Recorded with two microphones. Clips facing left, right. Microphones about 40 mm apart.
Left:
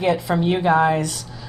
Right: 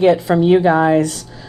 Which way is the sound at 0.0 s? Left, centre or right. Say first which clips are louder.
Right 7 dB; right.